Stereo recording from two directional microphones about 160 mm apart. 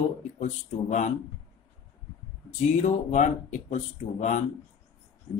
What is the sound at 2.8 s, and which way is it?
Speech, 50° left (ahead or behind).